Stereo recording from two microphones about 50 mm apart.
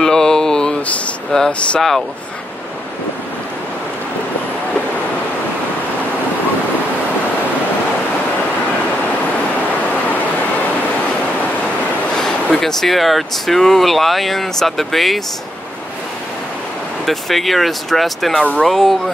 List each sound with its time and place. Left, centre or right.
0.0 s a sound: centre
0.8 s speech: left
1.8 s speech: centre
12.2 s speech: centre
17.0 s speech: centre
18.4 s speech: centre
18.7 s speech: centre